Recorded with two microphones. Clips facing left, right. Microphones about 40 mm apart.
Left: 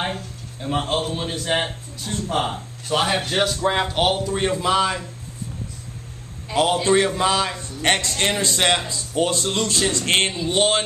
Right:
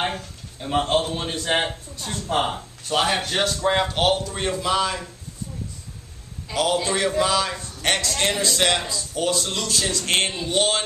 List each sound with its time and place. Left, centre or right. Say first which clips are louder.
0.0 s a man's voice: even; centre
6.5 s speech: left 4 dB; left